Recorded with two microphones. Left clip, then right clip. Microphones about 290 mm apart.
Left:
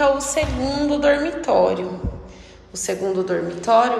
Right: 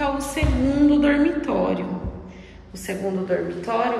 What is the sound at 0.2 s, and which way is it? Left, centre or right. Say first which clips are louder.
A woman's voice: left 2 dB; centre.